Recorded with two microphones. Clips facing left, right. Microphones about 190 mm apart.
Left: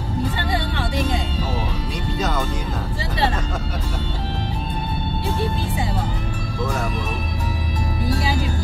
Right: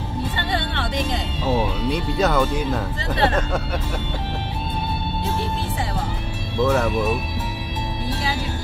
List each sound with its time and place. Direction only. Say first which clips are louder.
0.4 s music: left 1 dB; 10° left (ahead or behind)
1.9 s music: right 5 dB; 60° right (ahead or behind)